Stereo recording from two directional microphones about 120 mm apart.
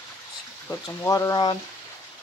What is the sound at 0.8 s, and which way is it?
Speech, 25° left (ahead or behind).